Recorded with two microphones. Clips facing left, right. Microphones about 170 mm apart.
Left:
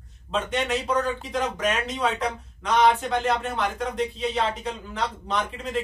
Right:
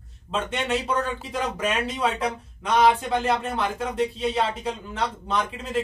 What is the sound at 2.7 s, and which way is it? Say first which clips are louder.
Speech: right 1 dB; 5° right (ahead or behind).